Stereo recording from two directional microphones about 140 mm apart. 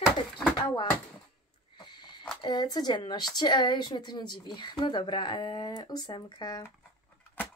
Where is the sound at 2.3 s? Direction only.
30° left (ahead or behind).